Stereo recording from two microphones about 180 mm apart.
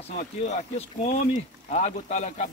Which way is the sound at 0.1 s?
40° left (ahead or behind).